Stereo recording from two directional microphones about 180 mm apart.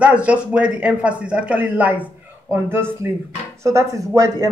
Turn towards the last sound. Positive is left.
turn(degrees=-20)  # may be behind; listen again after turning